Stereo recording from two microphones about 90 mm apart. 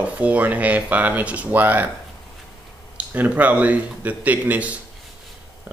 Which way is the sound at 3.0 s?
20° right (ahead or behind).